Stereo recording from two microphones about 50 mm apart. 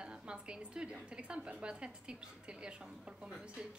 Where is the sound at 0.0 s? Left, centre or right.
Centre.